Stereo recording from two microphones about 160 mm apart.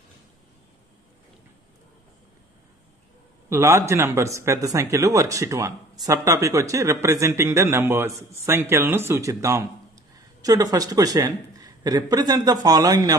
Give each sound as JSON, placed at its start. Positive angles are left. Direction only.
{"t": 3.4, "sound": "a man's voice", "side_deg": -15}